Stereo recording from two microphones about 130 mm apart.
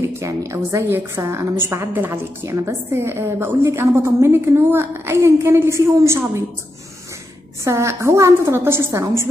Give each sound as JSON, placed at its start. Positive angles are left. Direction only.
{"t": 0.0, "sound": "a woman's voice", "side_deg": -25}
{"t": 7.6, "sound": "a woman's voice", "side_deg": -20}